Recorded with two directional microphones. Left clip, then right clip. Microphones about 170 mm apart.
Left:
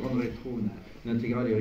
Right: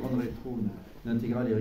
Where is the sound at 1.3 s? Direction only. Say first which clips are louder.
Left 2 dB; 35° right (ahead or behind).